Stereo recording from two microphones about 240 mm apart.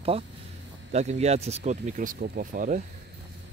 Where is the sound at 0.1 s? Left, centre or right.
Right.